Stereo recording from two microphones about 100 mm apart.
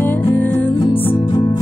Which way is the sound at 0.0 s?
20° left (ahead or behind).